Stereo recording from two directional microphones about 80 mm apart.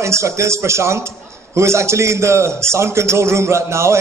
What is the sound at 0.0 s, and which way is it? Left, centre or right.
A man's voice, right.